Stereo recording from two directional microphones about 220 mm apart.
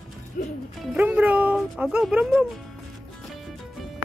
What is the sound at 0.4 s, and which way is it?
Speech, 40° left (ahead or behind).